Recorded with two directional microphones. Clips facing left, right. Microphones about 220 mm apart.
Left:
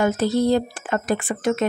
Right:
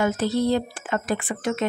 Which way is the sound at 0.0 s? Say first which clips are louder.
Left 3 dB; 45° left (ahead or behind).